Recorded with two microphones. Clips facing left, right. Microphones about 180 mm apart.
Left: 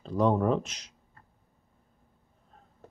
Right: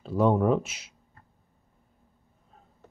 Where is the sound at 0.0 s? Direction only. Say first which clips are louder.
Right 2 dB; 5° right (ahead or behind).